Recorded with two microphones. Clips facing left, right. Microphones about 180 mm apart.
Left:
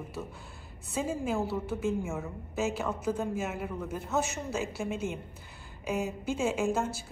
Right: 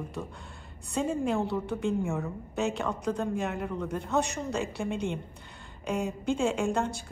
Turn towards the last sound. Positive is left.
turn(degrees=5)  # may be behind; listen again after turning